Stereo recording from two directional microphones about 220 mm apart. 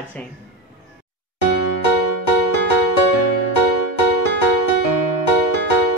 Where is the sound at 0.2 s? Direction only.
5° left (ahead or behind).